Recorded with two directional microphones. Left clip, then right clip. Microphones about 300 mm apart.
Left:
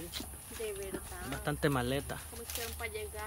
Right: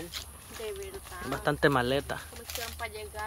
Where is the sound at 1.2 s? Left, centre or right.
Centre.